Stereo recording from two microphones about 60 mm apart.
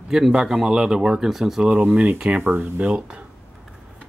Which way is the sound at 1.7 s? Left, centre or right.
Right.